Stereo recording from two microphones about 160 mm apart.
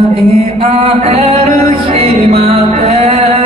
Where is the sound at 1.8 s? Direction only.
40° right (ahead or behind).